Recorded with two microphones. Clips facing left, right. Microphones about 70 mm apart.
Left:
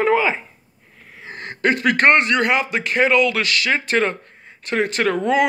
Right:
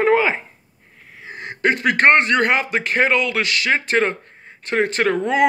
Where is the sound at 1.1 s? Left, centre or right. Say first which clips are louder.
Even; centre.